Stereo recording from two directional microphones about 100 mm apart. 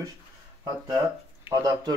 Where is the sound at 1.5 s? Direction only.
35° right (ahead or behind).